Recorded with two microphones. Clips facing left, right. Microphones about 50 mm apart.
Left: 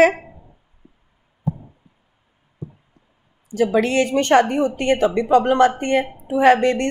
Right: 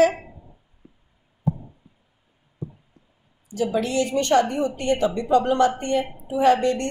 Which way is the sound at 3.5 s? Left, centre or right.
Left.